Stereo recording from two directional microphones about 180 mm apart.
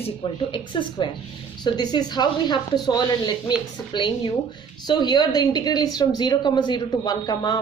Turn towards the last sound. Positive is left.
turn(degrees=25)  # may be behind; listen again after turning